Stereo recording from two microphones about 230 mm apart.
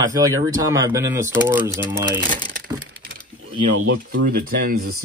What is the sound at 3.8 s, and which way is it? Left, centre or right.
Speech, right.